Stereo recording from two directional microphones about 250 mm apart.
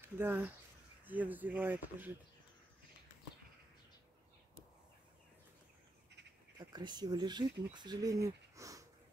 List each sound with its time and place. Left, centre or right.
0.0 s speech: centre
6.6 s speech: centre
8.5 s sniff: centre